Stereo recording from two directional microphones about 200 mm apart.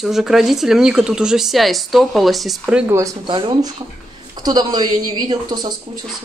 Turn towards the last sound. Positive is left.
turn(degrees=-20)  # may be behind; listen again after turning